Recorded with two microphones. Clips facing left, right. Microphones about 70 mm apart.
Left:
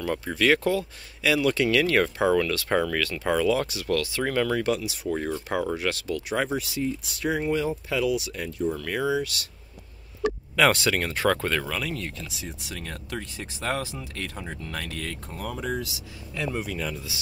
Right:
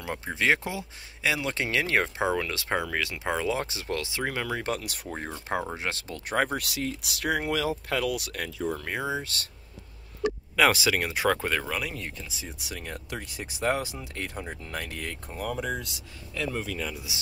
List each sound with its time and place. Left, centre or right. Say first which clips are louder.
0.0 s speech: left 4 dB; centre
4.6 s speech: left 5 dB; right
5.0 s speech: left 8 dB; right
6.6 s speech: left 3 dB; right
7.9 s speech: left 3 dB; right
8.6 s speech: left 5 dB; right
10.5 s speech: left 1 dB; centre
16.3 s speech: left 1 dB; centre
16.9 s speech: left 2 dB; centre